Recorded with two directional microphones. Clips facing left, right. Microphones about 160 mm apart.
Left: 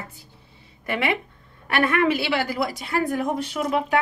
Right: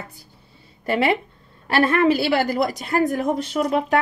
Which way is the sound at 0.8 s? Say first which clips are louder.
Right 5 dB; 35° right (ahead or behind).